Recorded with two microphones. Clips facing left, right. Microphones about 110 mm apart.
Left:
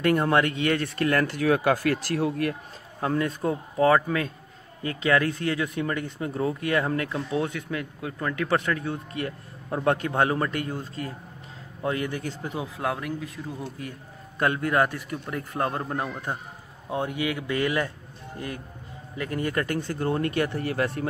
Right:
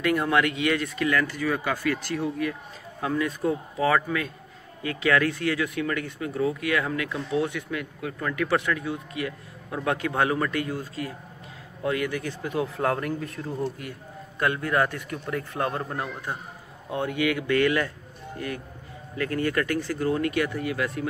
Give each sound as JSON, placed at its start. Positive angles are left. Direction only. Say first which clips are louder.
{"t": 0.0, "sound": "speech", "louder": "left 1 dB", "side_deg": 40}
{"t": 0.9, "sound": "speech", "louder": "left 1 dB", "side_deg": 55}
{"t": 3.0, "sound": "speech", "louder": "even", "side_deg": 35}
{"t": 12.7, "sound": "speech", "louder": "right 3 dB", "side_deg": 5}
{"t": 14.4, "sound": "speech", "louder": "left 1 dB", "side_deg": 20}
{"t": 15.6, "sound": "speech", "louder": "left 1 dB", "side_deg": 30}
{"t": 15.9, "sound": "speech", "louder": "left 2 dB", "side_deg": 20}
{"t": 19.1, "sound": "speech", "louder": "right 2 dB", "side_deg": 20}